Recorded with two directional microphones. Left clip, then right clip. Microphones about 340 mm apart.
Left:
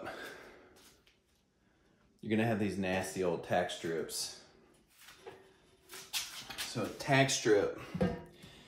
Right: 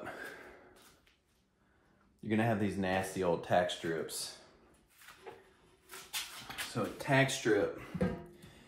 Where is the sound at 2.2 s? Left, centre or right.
Centre.